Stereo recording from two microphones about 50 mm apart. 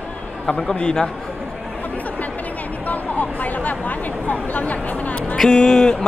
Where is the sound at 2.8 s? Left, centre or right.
Left.